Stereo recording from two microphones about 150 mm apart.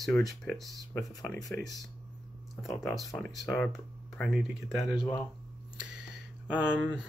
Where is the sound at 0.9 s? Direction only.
15° left (ahead or behind).